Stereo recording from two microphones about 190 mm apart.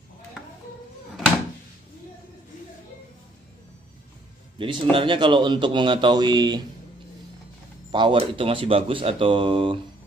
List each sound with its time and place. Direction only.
4.6 s speech: 25° right (ahead or behind)
7.9 s speech: 25° right (ahead or behind)